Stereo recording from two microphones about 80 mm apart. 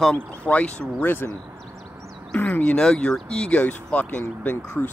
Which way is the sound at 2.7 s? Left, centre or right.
Centre.